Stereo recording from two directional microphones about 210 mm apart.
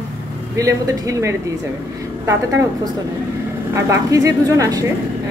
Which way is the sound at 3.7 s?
15° right (ahead or behind).